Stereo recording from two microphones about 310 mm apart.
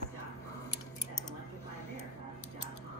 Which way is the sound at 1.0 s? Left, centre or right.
Left.